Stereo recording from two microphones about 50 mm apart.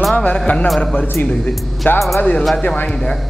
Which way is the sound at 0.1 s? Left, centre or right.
Left.